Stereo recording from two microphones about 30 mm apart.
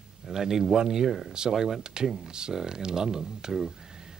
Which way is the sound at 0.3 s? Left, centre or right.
Centre.